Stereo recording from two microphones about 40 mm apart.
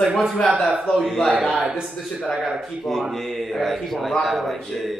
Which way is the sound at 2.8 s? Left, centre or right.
Centre.